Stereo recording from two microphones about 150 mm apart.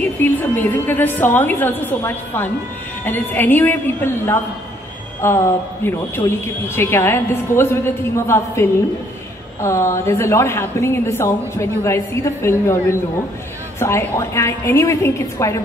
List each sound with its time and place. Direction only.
0.0 s a woman's voice: 10° left (ahead or behind)